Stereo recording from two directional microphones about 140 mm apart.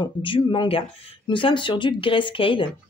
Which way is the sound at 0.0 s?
40° left (ahead or behind).